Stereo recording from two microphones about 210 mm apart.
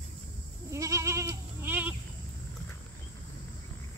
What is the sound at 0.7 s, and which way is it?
Goat, 15° right (ahead or behind).